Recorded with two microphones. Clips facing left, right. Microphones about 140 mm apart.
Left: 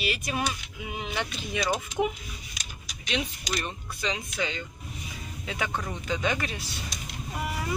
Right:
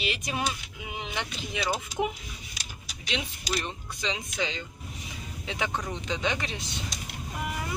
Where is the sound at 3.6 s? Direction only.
20° right (ahead or behind).